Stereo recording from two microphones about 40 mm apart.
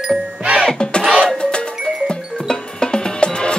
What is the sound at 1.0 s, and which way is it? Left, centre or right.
Music, centre.